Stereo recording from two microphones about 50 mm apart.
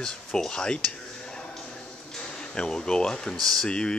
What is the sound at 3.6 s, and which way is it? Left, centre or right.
Speech, centre.